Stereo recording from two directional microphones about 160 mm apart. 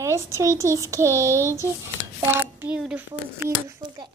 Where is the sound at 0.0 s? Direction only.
20° right (ahead or behind).